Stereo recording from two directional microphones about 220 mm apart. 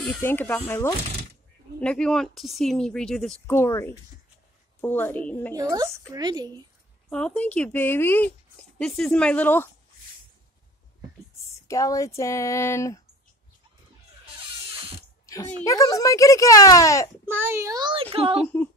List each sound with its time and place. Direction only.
0.2 s speech: 10° left (ahead or behind)
5.6 s a woman's voice: 15° right (ahead or behind)
7.1 s speech: 5° left (ahead or behind)
11.6 s speech: 15° left (ahead or behind)
15.2 s dog: 15° left (ahead or behind)
15.6 s speech: 15° left (ahead or behind)
17.3 s a woman's voice: 10° right (ahead or behind); by 18.5 s 25° right (ahead or behind)